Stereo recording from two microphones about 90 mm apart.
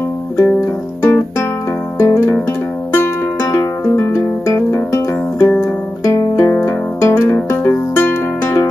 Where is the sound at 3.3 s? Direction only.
35° left (ahead or behind).